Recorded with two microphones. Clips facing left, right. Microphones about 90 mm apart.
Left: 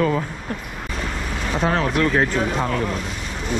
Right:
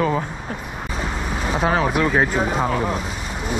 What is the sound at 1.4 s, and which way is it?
Speech, 5° right (ahead or behind).